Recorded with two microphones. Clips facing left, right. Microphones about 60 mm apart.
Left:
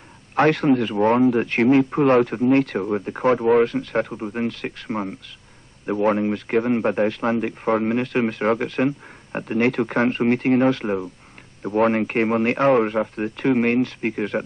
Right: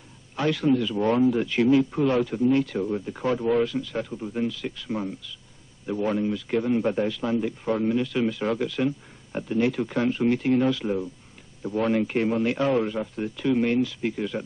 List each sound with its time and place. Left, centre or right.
0.4 s a man's voice: left